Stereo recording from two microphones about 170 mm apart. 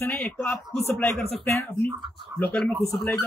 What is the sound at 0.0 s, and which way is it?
A man's voice, 10° left (ahead or behind).